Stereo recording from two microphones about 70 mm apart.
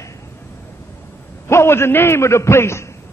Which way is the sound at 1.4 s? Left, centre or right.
Left.